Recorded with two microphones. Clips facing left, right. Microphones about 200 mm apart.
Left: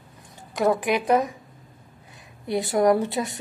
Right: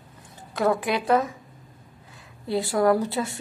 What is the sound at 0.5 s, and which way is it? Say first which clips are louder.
A woman's voice: left 2 dB; 15° left (ahead or behind).